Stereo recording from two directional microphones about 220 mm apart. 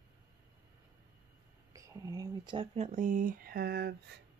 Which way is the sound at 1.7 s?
15° right (ahead or behind).